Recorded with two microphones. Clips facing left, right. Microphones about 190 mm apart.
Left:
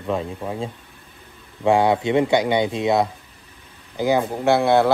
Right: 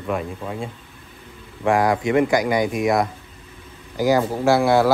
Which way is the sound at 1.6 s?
25° left (ahead or behind).